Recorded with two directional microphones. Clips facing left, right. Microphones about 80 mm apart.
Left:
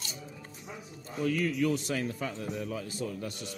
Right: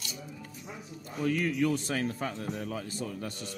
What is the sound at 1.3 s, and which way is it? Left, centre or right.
A man's voice, right.